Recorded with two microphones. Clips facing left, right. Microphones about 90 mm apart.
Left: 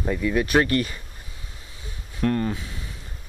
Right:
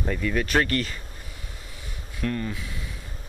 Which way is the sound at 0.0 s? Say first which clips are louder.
Left 3 dB; 15° left (ahead or behind).